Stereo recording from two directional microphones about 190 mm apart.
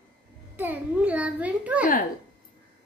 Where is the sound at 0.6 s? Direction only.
10° right (ahead or behind).